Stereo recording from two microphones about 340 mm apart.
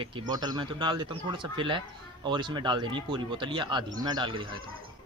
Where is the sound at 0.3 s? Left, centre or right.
Centre.